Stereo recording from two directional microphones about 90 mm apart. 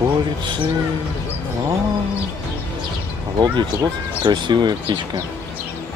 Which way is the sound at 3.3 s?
55° right (ahead or behind).